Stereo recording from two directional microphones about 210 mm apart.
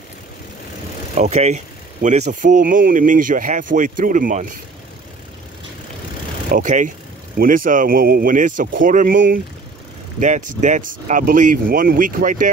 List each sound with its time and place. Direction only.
1.1 s speech: 30° right (ahead or behind)
6.5 s speech: 35° right (ahead or behind)
10.2 s speech: 35° right (ahead or behind)